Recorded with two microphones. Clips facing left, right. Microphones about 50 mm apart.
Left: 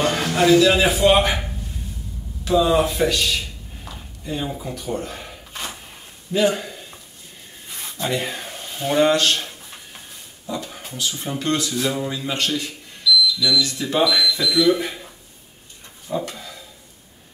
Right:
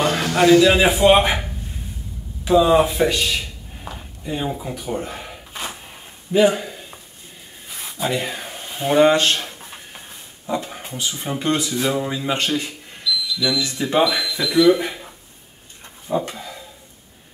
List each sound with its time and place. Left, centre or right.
0.4 s a man's voice: centre
2.4 s a man's voice: centre
3.0 s a sound: centre
10.0 s speech: right
13.7 s speech: right
14.8 s a sound: centre